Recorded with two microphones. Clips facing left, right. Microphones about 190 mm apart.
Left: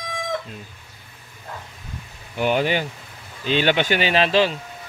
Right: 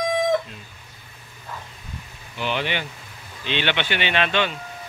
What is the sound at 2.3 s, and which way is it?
Speech, 45° left (ahead or behind).